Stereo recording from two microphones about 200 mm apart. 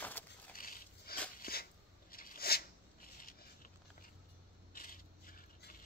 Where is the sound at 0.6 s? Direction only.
45° left (ahead or behind).